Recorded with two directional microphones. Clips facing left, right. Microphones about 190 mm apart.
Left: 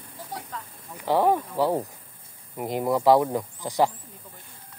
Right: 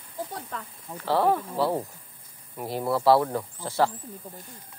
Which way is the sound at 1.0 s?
15° left (ahead or behind).